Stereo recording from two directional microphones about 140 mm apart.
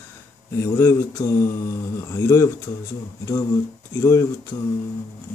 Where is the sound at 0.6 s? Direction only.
20° left (ahead or behind).